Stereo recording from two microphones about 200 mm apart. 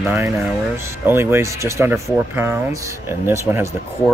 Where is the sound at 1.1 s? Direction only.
10° right (ahead or behind).